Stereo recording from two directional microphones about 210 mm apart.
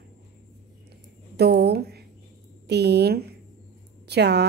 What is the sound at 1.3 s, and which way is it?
A woman's voice, 50° right (ahead or behind).